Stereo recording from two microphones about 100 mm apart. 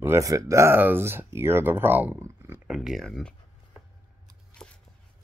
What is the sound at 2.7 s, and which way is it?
Speech, 5° right (ahead or behind).